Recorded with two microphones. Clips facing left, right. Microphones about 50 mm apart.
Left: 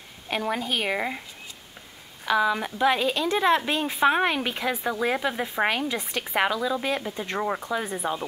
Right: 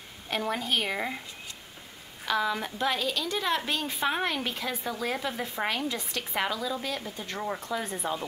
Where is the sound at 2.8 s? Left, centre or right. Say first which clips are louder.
Left 7 dB; left.